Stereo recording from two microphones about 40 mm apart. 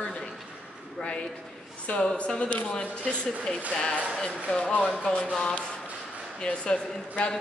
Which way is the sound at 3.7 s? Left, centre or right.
Centre.